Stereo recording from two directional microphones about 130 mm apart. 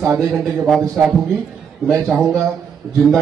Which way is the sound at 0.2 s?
Centre (ahead or behind).